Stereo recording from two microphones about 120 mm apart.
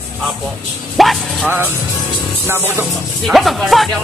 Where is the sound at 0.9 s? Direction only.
Centre (ahead or behind).